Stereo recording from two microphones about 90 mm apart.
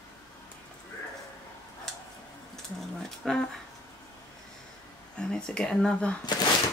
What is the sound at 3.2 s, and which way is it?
Speech, centre (ahead or behind).